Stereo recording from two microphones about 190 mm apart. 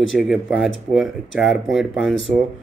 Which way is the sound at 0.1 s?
Centre (ahead or behind).